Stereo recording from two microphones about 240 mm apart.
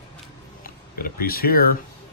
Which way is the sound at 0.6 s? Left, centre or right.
Left.